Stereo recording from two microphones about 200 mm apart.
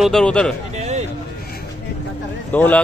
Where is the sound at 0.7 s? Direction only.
35° right (ahead or behind).